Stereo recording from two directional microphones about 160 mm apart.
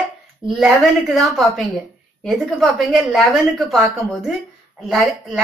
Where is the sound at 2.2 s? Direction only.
Centre (ahead or behind).